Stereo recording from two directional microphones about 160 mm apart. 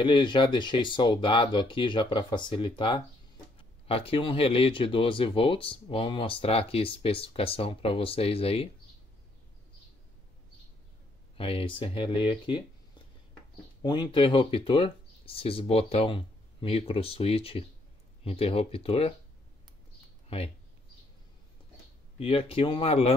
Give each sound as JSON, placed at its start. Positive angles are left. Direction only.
{"t": 0.0, "sound": "speech", "side_deg": 30}
{"t": 11.3, "sound": "speech", "side_deg": 35}
{"t": 13.8, "sound": "speech", "side_deg": 30}
{"t": 20.2, "sound": "speech", "side_deg": 40}
{"t": 22.2, "sound": "speech", "side_deg": 35}